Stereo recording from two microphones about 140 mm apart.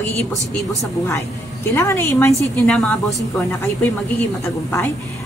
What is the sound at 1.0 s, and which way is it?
A woman's voice, 20° left (ahead or behind).